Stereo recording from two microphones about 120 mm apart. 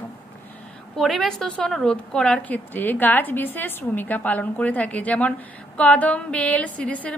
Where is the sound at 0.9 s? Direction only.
Centre (ahead or behind).